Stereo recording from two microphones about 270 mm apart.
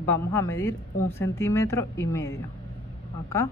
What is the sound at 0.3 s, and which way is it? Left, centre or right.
A woman's voice, centre.